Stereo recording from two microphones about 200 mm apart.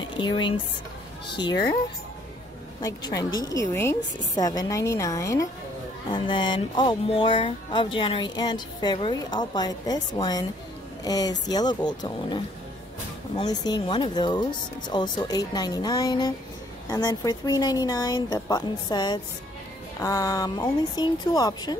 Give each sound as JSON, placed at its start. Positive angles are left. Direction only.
{"t": 0.2, "sound": "speech", "side_deg": 20}
{"t": 2.8, "sound": "a woman's voice", "side_deg": 20}
{"t": 13.4, "sound": "speech", "side_deg": 20}